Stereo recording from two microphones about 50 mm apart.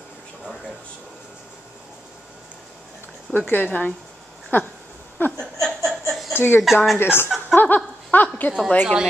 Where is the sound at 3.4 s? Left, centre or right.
Left.